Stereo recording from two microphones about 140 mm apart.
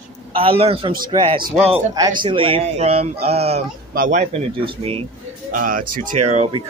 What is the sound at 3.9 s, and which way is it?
Speech, 80° right.